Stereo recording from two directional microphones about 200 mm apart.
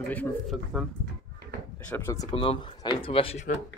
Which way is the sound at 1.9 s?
15° left (ahead or behind).